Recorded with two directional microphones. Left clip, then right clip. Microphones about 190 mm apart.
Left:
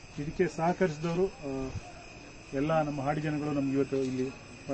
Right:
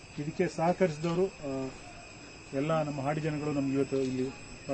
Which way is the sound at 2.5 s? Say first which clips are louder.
Left 2 dB; 15° right (ahead or behind).